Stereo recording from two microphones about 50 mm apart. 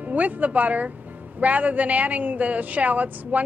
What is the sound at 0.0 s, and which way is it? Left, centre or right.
A woman's voice, right.